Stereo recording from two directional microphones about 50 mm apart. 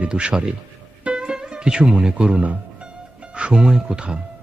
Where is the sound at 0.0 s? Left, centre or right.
Centre.